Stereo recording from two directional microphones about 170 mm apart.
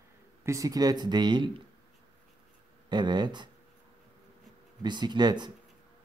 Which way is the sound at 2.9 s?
25° right (ahead or behind).